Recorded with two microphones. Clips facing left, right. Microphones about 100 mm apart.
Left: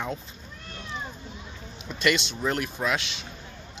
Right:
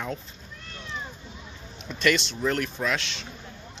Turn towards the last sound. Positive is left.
turn(degrees=10)  # may be behind; listen again after turning